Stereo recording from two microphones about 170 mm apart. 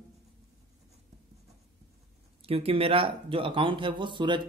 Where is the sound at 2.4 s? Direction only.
35° right (ahead or behind).